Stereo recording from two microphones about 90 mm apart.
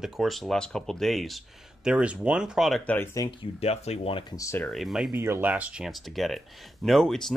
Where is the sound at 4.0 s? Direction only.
75° left (ahead or behind).